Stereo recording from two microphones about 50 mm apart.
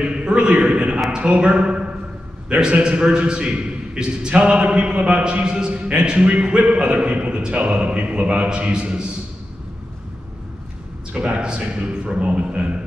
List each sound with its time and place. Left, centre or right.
0.0 s a sound: right
1.1 s a man's voice: right
11.1 s a man's voice: centre